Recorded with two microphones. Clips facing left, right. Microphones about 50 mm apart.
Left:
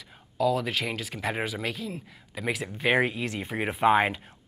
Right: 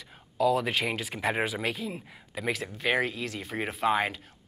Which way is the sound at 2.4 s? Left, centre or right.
Centre.